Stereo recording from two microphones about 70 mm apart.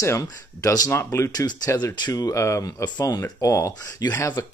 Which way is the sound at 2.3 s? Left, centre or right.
Left.